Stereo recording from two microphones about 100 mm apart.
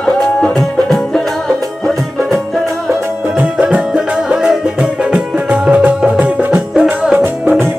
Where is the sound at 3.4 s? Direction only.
10° right (ahead or behind).